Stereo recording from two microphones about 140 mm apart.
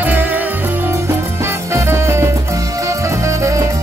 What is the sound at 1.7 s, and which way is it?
Music, 20° right (ahead or behind).